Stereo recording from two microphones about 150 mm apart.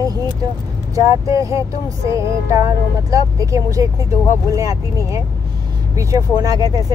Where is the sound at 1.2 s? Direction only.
20° right (ahead or behind).